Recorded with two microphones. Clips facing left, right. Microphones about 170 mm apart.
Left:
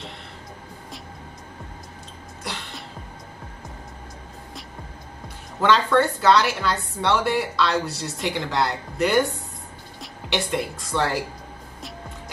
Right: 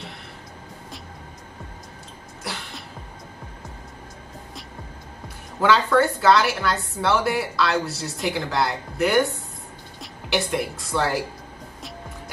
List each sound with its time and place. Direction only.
5.6 s a woman's voice: 5° right (ahead or behind)
10.3 s a woman's voice: 5° right (ahead or behind)